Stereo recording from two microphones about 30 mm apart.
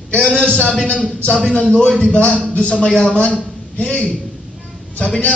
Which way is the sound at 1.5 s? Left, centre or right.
Left.